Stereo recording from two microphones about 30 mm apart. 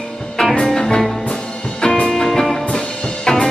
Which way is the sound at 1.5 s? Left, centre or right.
Left.